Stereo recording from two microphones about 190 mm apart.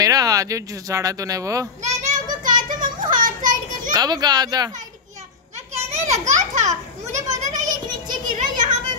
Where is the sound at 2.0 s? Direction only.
40° right (ahead or behind).